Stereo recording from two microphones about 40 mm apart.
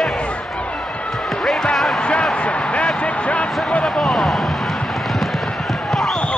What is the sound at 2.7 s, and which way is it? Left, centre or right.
Speech, left.